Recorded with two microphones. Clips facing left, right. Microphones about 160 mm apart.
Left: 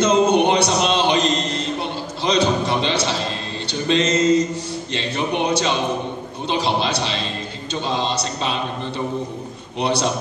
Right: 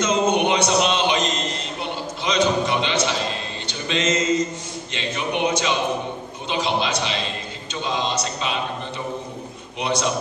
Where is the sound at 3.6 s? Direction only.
35° left (ahead or behind).